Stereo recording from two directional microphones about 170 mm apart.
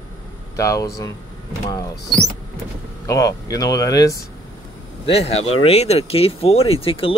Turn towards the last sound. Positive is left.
turn(degrees=35)  # may be behind; listen again after turning